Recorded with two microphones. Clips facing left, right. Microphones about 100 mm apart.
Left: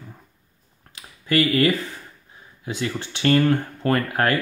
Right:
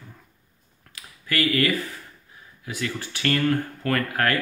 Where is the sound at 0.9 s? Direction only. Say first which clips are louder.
Left 7 dB; 25° left (ahead or behind).